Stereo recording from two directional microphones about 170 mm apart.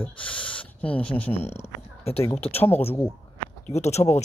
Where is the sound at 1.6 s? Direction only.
35° left (ahead or behind).